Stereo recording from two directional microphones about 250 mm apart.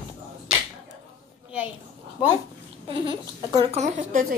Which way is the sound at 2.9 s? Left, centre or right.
Right.